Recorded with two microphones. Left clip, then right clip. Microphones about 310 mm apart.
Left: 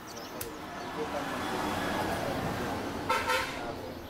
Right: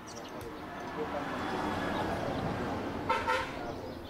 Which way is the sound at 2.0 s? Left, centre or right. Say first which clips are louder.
Left 2 dB; centre.